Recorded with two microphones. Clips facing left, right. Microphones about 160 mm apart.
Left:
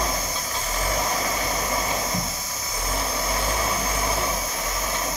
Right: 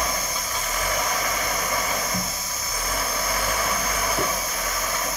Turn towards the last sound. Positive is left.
turn(degrees=20)  # may be behind; listen again after turning